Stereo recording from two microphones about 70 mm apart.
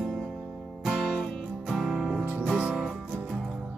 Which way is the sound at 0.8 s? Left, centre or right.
Centre.